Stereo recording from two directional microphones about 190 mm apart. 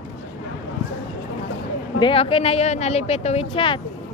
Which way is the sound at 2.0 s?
30° left (ahead or behind).